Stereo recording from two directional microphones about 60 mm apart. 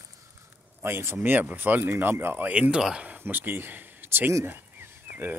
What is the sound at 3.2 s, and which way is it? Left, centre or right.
Speech, right.